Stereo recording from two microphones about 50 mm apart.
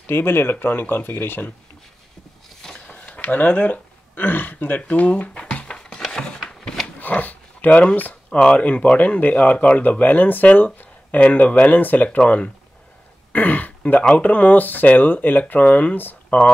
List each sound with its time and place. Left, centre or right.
0.0 s speech: left
3.1 s speech: left
6.0 s a sound: centre
7.0 s dog: left
7.9 s speech: left
8.5 s speech: left
13.3 s speech: left